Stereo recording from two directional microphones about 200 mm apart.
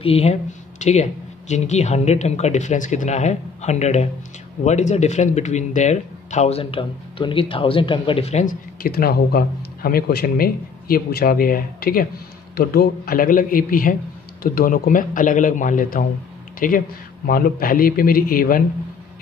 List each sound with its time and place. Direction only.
0.0 s a man's voice: 30° left (ahead or behind)